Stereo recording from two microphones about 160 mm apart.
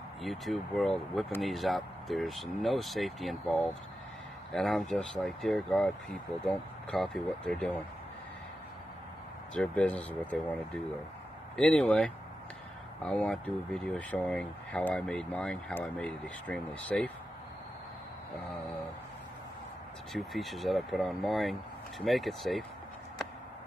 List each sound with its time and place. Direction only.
0.2 s speech: centre (ahead or behind)
9.5 s speech: 5° left (ahead or behind)
20.1 s speech: centre (ahead or behind)